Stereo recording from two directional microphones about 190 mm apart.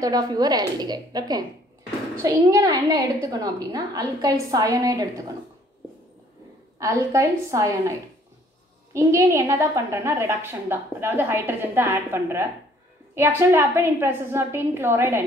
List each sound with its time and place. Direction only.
0.0 s a woman's voice: 20° right (ahead or behind)
6.8 s a woman's voice: 15° right (ahead or behind)
8.9 s a woman's voice: 15° right (ahead or behind)